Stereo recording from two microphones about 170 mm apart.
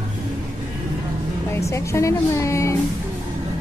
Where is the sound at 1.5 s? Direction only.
15° left (ahead or behind).